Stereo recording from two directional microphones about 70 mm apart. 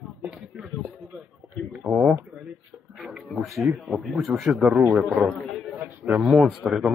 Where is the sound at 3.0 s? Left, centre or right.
Centre.